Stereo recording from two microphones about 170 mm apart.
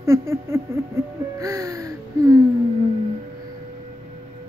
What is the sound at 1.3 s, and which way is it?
Gasp, 20° right (ahead or behind).